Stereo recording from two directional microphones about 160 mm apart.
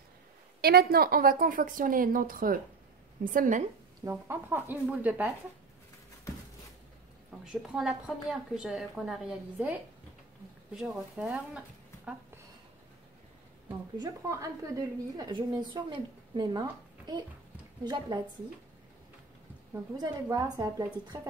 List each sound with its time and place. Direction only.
0.6 s a woman's voice: 75° right (ahead or behind); by 3.6 s 55° right (ahead or behind)
4.0 s speech: 15° right (ahead or behind)
7.4 s a woman's voice: 5° right (ahead or behind)
13.9 s a woman's voice: 20° right (ahead or behind)
19.7 s a woman's voice: 25° right (ahead or behind)